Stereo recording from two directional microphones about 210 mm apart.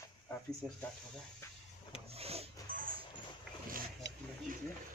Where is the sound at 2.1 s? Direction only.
30° right (ahead or behind).